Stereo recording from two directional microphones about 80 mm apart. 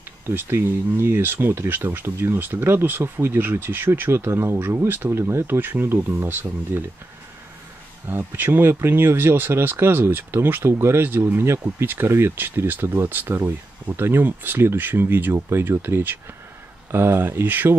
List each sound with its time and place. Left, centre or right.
0.3 s speech: right
8.1 s speech: right